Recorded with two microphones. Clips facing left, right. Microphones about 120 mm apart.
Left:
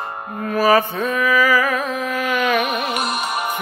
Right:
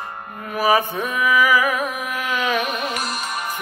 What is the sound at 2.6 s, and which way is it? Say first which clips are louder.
Music: left 3 dB; 10° left (ahead or behind).